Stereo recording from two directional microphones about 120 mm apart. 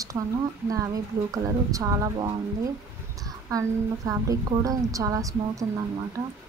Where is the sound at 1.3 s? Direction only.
30° right (ahead or behind).